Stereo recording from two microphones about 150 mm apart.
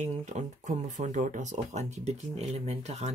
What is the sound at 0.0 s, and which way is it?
Speech, 50° right (ahead or behind).